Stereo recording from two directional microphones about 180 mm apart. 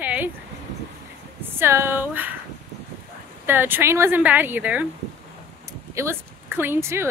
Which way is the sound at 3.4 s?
10° right (ahead or behind).